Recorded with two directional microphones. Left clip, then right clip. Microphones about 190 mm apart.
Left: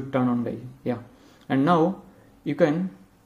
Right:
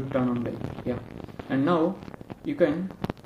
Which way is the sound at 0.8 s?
30° left (ahead or behind).